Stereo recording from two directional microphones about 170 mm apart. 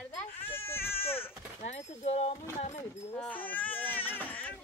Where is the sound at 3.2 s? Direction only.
10° left (ahead or behind).